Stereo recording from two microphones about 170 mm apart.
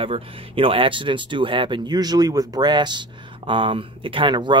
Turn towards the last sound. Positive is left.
turn(degrees=-25)  # may be behind; listen again after turning